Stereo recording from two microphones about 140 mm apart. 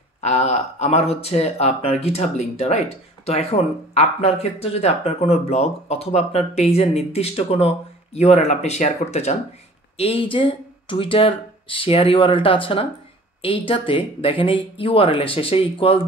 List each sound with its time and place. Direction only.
0.2 s speech: 50° left (ahead or behind)